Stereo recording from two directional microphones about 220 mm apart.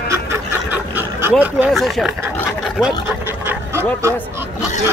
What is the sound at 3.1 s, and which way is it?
Dog, 10° right (ahead or behind).